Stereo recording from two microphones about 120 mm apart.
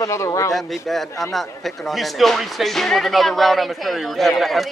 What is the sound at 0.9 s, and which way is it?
Speech, centre (ahead or behind).